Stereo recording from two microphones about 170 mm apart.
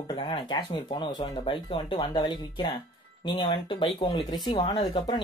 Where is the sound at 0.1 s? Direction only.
25° left (ahead or behind).